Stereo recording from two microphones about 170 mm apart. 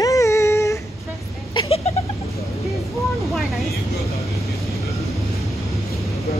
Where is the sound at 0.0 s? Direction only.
20° left (ahead or behind).